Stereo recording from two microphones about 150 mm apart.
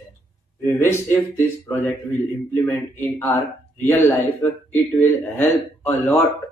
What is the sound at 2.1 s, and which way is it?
Speech, 15° left (ahead or behind).